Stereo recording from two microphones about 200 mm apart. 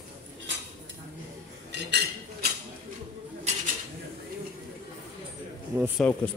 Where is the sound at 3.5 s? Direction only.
35° right (ahead or behind).